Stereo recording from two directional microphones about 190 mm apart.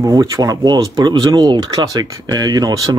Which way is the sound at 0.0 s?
20° right (ahead or behind).